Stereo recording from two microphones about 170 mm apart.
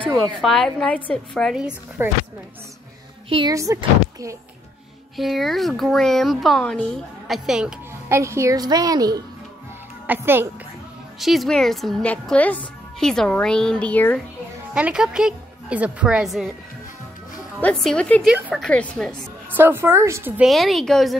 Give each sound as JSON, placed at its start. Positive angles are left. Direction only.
{"t": 0.2, "sound": "speech", "side_deg": 0}
{"t": 3.3, "sound": "speech", "side_deg": -30}
{"t": 3.5, "sound": "a woman's voice", "side_deg": -20}
{"t": 5.1, "sound": "speech", "side_deg": 0}
{"t": 8.1, "sound": "a woman's voice", "side_deg": -15}
{"t": 10.0, "sound": "a woman's voice", "side_deg": -10}
{"t": 11.1, "sound": "speech", "side_deg": 0}
{"t": 14.7, "sound": "a woman's voice", "side_deg": -5}
{"t": 17.6, "sound": "speech", "side_deg": 5}
{"t": 18.2, "sound": "speech", "side_deg": -5}
{"t": 18.6, "sound": "speech", "side_deg": 5}
{"t": 19.5, "sound": "a woman's voice", "side_deg": -15}
{"t": 20.4, "sound": "speech", "side_deg": 0}